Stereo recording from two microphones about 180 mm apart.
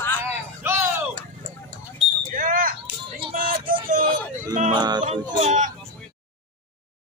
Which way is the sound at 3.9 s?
50° right (ahead or behind).